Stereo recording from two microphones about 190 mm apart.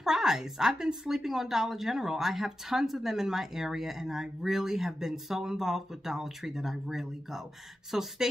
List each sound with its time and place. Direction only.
0.0 s a woman's voice: 5° right (ahead or behind)